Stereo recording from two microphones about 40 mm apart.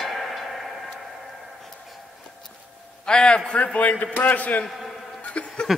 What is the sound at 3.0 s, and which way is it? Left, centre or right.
Speech, left.